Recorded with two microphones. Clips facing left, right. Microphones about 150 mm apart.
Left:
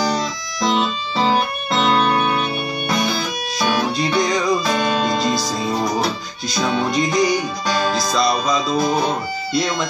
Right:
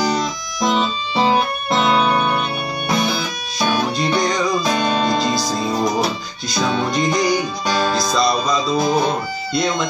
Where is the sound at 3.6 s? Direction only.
Centre (ahead or behind).